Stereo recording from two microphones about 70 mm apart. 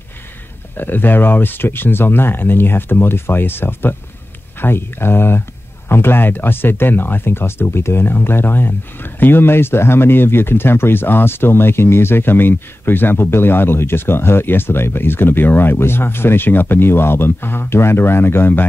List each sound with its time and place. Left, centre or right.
0.7 s speech: left